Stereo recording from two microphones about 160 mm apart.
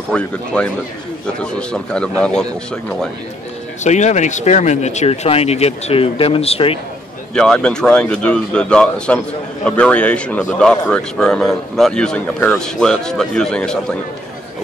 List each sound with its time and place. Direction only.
0.1 s a man's voice: 5° left (ahead or behind)
3.8 s speech: 45° left (ahead or behind)
7.3 s a man's voice: 5° left (ahead or behind)